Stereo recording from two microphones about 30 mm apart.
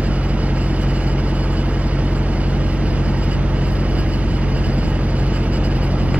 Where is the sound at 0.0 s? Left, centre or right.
Right.